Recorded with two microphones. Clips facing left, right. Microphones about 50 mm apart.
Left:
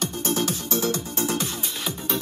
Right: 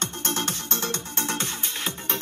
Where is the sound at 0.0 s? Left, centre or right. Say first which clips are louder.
Left 3 dB; right.